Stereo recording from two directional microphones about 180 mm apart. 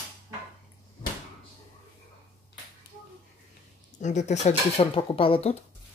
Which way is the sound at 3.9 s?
40° left (ahead or behind).